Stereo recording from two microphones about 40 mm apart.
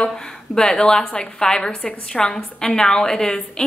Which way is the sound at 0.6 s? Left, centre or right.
Centre.